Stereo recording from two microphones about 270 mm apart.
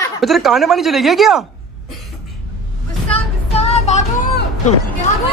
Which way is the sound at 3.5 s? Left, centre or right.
Left.